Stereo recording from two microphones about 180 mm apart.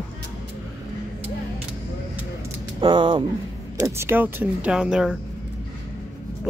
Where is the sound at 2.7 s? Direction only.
25° right (ahead or behind).